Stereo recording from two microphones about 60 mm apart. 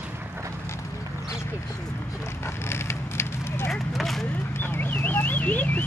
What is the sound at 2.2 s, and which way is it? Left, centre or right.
Speech, left.